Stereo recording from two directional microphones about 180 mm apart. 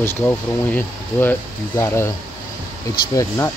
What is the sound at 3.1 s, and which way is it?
Speech, 15° left (ahead or behind).